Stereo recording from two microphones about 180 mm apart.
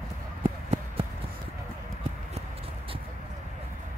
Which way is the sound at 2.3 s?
30° right (ahead or behind).